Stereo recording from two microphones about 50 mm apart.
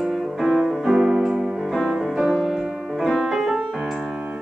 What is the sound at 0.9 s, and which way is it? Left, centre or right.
Piano, centre.